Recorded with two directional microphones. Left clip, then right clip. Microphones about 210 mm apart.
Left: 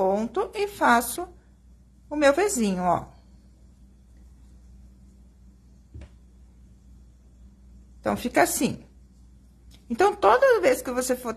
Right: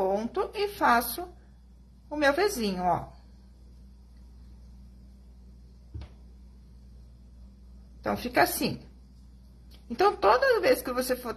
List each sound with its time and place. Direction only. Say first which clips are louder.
0.0 s speech: left 4 dB; 25° left (ahead or behind)
2.0 s speech: left 4 dB; 30° left (ahead or behind)
8.0 s speech: left 3 dB; 25° left (ahead or behind)
9.8 s speech: left 3 dB; 20° left (ahead or behind)